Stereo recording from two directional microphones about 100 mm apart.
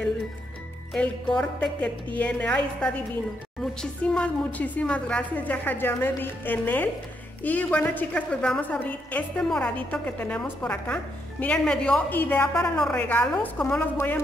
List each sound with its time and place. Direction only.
0.9 s a woman's voice: 10° left (ahead or behind)
9.8 s a woman's voice: 15° left (ahead or behind)